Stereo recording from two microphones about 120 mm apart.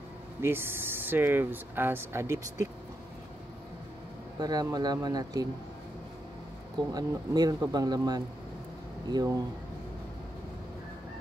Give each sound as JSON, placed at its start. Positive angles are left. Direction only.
{"t": 0.4, "sound": "speech", "side_deg": -20}
{"t": 4.4, "sound": "speech", "side_deg": -35}
{"t": 6.9, "sound": "speech", "side_deg": -35}